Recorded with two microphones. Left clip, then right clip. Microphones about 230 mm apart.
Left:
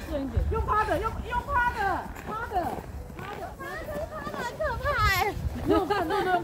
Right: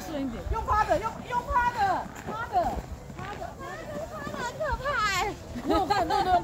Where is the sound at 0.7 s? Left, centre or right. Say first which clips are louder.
Right 1 dB; right.